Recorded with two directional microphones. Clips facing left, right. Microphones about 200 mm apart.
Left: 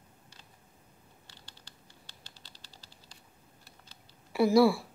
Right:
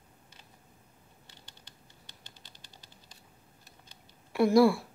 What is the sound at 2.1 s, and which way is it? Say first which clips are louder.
Typing: even; 15° right (ahead or behind).